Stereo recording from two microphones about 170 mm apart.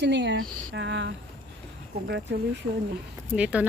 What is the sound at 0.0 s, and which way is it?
Speech, 90° right.